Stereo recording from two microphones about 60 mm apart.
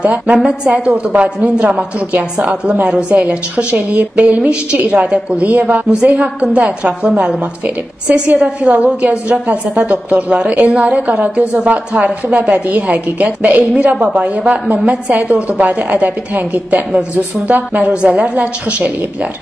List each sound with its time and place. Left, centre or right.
0.0 s a woman's voice: centre
13.9 s a woman's voice: centre